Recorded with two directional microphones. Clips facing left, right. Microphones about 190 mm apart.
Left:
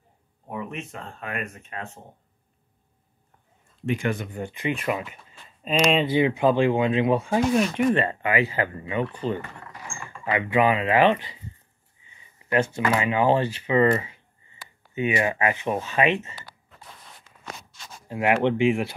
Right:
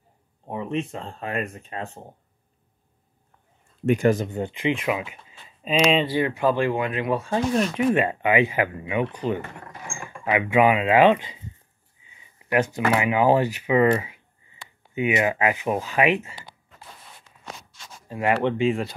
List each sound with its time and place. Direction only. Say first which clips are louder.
0.5 s speech: right 6 dB; 30° right (ahead or behind)
3.8 s speech: right 6 dB; 45° right (ahead or behind)
4.2 s speech: right 5 dB; 25° right (ahead or behind)
4.8 s speech: right 1 dB; 5° right (ahead or behind)
6.0 s speech: left 2 dB; 20° left (ahead or behind)
7.3 s speech: right 1 dB; 5° left (ahead or behind)
8.0 s speech: right 3 dB; 15° right (ahead or behind)
12.4 s speech: right 1 dB; 15° right (ahead or behind)
15.0 s speech: right 2 dB; 20° right (ahead or behind)
18.0 s speech: left 1 dB; 15° left (ahead or behind)